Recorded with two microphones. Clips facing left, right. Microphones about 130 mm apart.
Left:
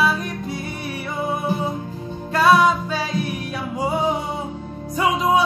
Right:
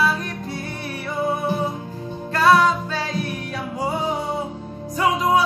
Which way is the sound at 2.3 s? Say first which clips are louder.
Left 1 dB; 15° left (ahead or behind).